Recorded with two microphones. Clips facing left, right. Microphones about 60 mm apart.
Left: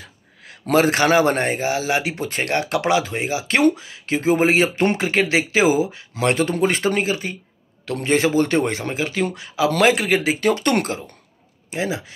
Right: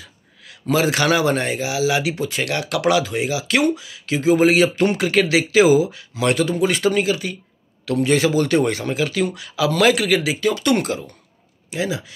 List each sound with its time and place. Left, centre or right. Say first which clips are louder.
0.0 s speech: left 1 dB; left
11.7 s speech: even; left